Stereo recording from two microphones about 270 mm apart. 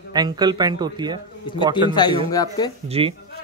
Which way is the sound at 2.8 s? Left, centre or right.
Right.